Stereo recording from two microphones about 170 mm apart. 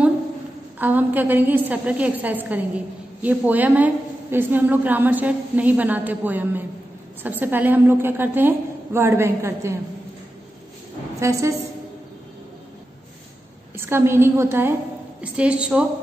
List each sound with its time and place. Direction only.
0.7 s a woman's voice: 10° right (ahead or behind)
11.1 s a woman's voice: 15° right (ahead or behind)
13.7 s a woman's voice: 15° right (ahead or behind)